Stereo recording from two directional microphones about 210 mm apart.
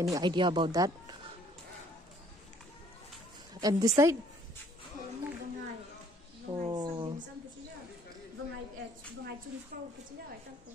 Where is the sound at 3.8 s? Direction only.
15° right (ahead or behind).